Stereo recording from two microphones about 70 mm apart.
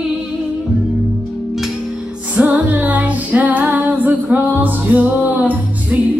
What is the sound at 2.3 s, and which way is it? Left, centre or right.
Music, right.